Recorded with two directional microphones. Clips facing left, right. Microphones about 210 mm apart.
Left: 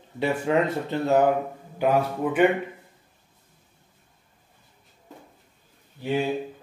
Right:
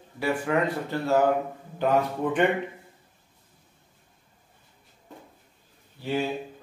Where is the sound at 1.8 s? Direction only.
10° left (ahead or behind).